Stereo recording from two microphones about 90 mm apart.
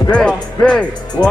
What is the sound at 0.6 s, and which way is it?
Speech, 10° left (ahead or behind).